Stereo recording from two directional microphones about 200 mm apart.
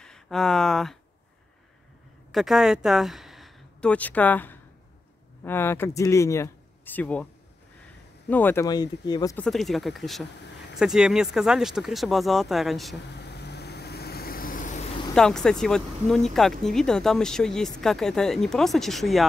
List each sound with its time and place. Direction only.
0.0 s speech: 5° left (ahead or behind)
2.3 s speech: centre (ahead or behind)
8.3 s speech: 10° left (ahead or behind)
9.4 s speech: centre (ahead or behind)
13.1 s vehicle: 55° left (ahead or behind); by 14.8 s 40° left (ahead or behind)
15.1 s speech: 5° left (ahead or behind)